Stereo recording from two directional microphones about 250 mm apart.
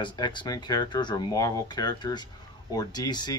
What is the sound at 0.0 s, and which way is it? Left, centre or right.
Speech, centre.